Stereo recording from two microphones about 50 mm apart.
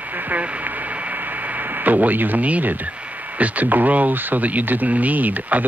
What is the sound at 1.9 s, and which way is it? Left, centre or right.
Speech, right.